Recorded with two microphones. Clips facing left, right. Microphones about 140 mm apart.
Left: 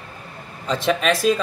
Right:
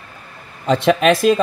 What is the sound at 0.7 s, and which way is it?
Speech, 65° right (ahead or behind).